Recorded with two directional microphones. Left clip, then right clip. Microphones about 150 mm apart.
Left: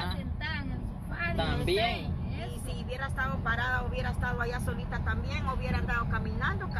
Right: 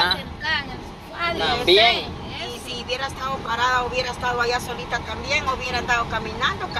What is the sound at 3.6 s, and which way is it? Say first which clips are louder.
Speech: right 12 dB; 30° right (ahead or behind).